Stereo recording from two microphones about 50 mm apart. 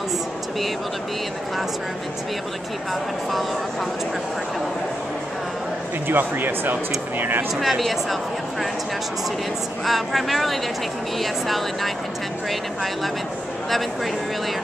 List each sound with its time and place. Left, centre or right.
2.9 s speech: centre
6.0 s speech: right
7.6 s speech: centre
9.8 s speech: centre